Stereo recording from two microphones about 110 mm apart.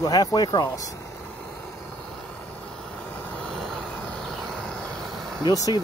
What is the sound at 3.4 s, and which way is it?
Vehicle, 5° left (ahead or behind).